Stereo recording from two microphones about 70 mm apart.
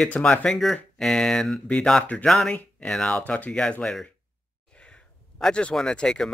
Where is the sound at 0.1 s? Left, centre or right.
Centre.